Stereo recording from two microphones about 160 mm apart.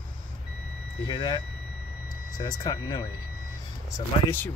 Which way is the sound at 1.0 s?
30° left (ahead or behind).